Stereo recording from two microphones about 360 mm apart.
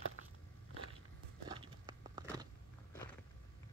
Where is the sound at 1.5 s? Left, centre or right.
Centre.